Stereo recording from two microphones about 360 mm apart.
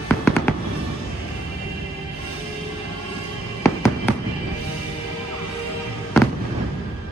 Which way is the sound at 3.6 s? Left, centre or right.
Centre.